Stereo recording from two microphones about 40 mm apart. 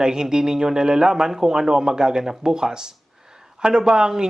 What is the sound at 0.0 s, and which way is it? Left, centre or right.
Speech, centre.